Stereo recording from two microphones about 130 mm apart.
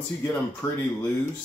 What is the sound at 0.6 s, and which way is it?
Speech, 20° left (ahead or behind).